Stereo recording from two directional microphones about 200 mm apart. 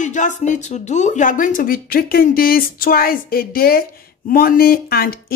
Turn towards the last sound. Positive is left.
turn(degrees=45)  # may be behind; listen again after turning